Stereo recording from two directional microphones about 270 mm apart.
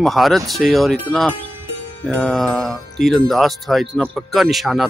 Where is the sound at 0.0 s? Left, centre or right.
Centre.